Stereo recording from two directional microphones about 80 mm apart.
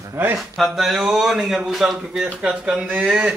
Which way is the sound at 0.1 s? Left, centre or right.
Right.